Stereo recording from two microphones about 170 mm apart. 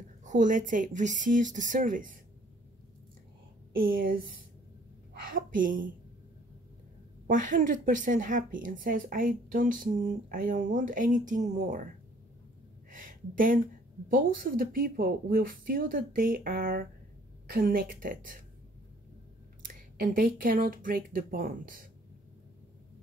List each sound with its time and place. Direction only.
0.2 s a woman's voice: 50° right (ahead or behind)
5.3 s a woman's voice: 50° right (ahead or behind)
7.2 s a woman's voice: 50° right (ahead or behind)
12.9 s a sound: 55° right (ahead or behind)
14.0 s speech: 55° right (ahead or behind)
19.7 s speech: 60° right (ahead or behind)